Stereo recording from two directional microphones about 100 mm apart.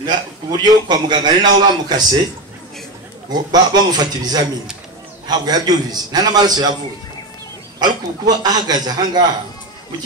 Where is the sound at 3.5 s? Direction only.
40° right (ahead or behind).